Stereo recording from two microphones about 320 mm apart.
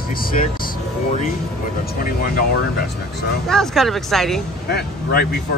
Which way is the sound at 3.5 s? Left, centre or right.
Centre.